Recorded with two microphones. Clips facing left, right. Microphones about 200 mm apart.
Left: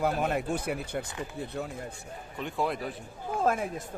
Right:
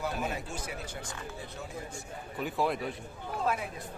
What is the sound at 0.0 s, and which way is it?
Speech, 60° left (ahead or behind).